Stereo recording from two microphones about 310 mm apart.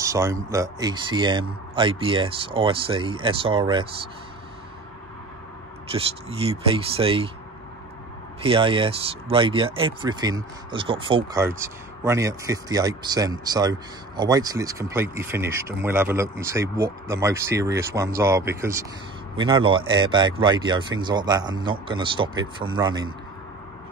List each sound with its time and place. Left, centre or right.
0.0 s speech: centre
5.9 s speech: centre
8.4 s speech: centre